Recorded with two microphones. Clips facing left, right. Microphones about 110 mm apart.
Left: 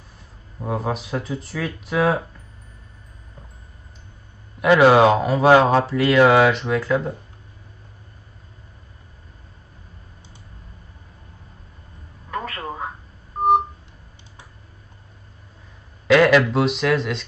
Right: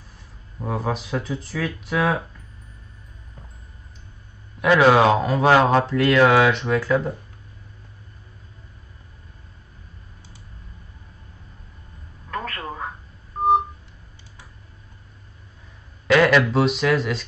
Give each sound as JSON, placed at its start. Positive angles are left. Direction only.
{"t": 0.6, "sound": "speech", "side_deg": 5}
{"t": 4.6, "sound": "speech", "side_deg": 10}
{"t": 12.3, "sound": "telephone", "side_deg": 10}
{"t": 16.1, "sound": "speech", "side_deg": 0}